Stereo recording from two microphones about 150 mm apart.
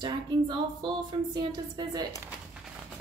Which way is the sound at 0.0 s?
30° right (ahead or behind).